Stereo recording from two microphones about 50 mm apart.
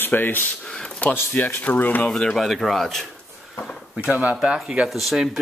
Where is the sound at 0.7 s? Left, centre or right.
Centre.